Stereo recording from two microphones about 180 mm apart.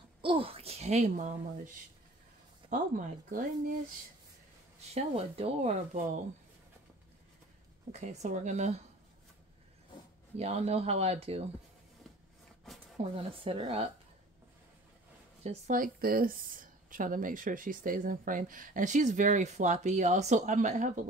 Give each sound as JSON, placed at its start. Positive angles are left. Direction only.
{"t": 0.2, "sound": "speech", "side_deg": -30}
{"t": 2.7, "sound": "speech", "side_deg": -50}
{"t": 4.9, "sound": "speech", "side_deg": -30}
{"t": 7.9, "sound": "speech", "side_deg": -40}
{"t": 10.3, "sound": "speech", "side_deg": -35}
{"t": 13.0, "sound": "speech", "side_deg": -35}
{"t": 15.4, "sound": "speech", "side_deg": -45}